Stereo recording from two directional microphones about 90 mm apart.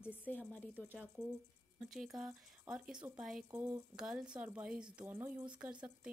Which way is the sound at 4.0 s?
5° right (ahead or behind).